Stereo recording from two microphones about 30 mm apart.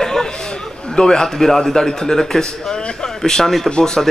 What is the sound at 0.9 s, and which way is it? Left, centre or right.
A man's voice, left.